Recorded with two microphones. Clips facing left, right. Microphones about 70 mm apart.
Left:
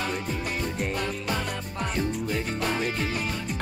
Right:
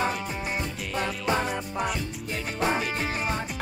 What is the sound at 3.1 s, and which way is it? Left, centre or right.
Music, right.